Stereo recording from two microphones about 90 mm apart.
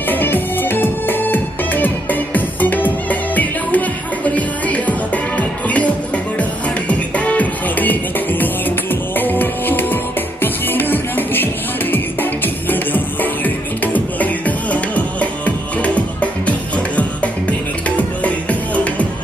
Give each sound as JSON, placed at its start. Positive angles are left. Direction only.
{"t": 0.1, "sound": "music", "side_deg": 20}